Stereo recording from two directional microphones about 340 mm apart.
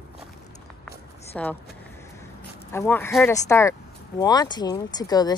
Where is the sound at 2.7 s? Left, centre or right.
Centre.